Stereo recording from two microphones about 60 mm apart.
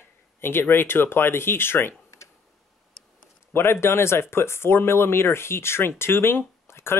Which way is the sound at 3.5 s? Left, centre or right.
Left.